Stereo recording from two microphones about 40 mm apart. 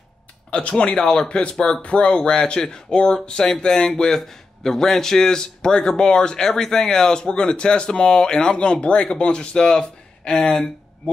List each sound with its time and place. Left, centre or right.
0.5 s a man's voice: left
1.8 s a man's voice: left